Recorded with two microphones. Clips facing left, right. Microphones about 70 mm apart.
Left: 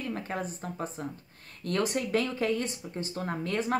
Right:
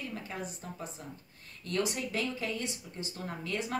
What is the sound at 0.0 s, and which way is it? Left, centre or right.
Speech, left.